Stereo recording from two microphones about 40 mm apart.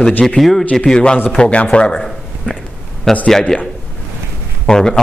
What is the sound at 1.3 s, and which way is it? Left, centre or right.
Speech, left.